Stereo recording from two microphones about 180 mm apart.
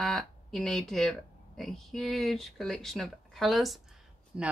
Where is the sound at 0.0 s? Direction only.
Centre (ahead or behind).